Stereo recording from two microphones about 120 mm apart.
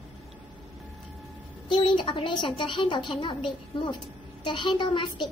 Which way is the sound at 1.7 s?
40° left (ahead or behind).